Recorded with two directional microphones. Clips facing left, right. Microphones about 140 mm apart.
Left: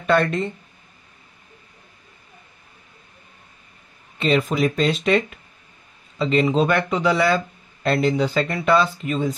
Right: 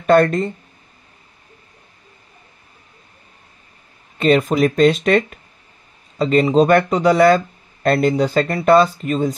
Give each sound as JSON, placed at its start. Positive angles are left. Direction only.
{"t": 0.0, "sound": "speech", "side_deg": -45}
{"t": 4.2, "sound": "a man's voice", "side_deg": -45}